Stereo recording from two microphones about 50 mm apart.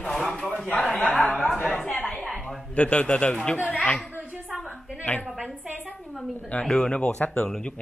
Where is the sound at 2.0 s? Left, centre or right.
Centre.